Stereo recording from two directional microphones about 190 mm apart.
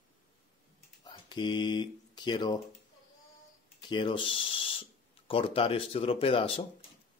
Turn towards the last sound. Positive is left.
turn(degrees=30)  # may be behind; listen again after turning